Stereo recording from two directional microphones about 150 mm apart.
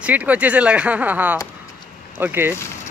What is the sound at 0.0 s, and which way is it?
Speech, 10° right (ahead or behind).